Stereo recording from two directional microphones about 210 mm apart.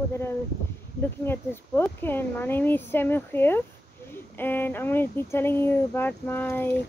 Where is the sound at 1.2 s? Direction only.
10° left (ahead or behind).